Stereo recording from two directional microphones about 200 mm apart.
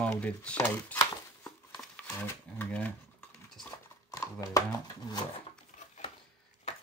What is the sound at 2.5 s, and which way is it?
Speech, 10° left (ahead or behind).